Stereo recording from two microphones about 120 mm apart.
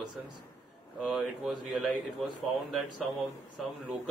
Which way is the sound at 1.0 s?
5° right (ahead or behind).